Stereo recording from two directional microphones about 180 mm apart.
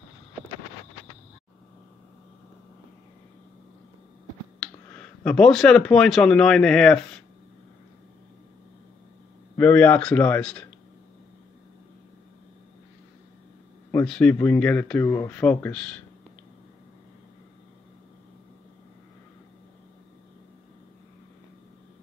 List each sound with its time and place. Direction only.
4.9 s speech: 5° left (ahead or behind)
9.6 s speech: 10° left (ahead or behind)
13.9 s speech: 5° left (ahead or behind)